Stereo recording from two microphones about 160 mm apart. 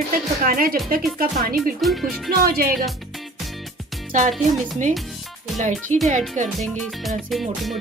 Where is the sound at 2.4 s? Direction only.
70° right (ahead or behind).